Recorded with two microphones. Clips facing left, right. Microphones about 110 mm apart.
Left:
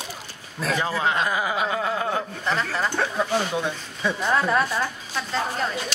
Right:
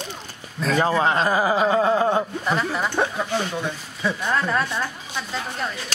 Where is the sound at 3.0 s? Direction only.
20° right (ahead or behind).